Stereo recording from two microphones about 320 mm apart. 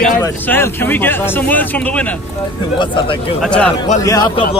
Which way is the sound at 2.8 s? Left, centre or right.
Centre.